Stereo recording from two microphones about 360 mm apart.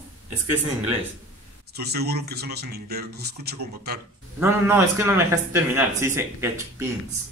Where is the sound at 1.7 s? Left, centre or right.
Right.